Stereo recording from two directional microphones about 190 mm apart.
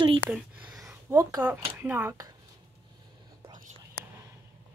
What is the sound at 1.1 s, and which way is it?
Speech, 20° right (ahead or behind).